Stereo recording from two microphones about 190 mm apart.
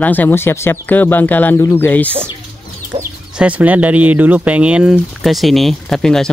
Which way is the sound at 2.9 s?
30° right (ahead or behind).